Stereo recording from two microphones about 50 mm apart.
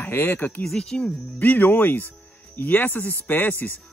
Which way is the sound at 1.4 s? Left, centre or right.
Left.